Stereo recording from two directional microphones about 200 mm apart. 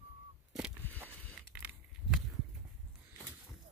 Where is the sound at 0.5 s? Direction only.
5° right (ahead or behind).